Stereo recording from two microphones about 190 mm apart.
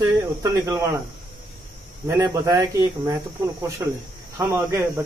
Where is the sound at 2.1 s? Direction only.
15° right (ahead or behind).